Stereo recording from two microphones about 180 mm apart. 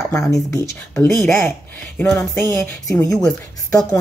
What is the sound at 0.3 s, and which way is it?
Speech, 15° left (ahead or behind).